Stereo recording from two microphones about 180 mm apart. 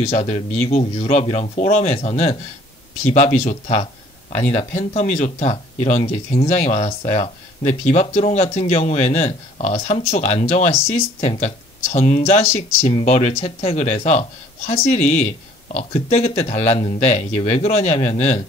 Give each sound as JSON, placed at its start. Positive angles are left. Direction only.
{"t": 0.0, "sound": "speech", "side_deg": 35}